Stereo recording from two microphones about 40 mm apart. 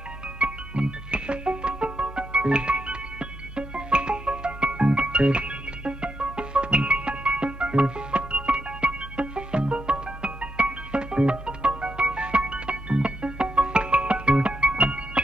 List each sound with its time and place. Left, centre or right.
0.4 s music: right